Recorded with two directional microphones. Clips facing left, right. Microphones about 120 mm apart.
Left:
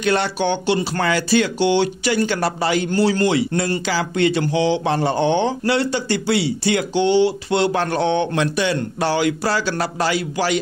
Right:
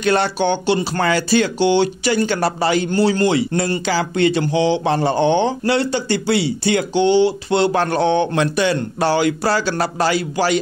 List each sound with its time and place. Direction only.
0.0 s speech: 40° right (ahead or behind)